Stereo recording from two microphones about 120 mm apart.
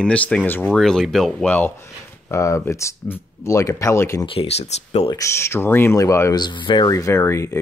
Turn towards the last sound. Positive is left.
turn(degrees=25)  # may be behind; listen again after turning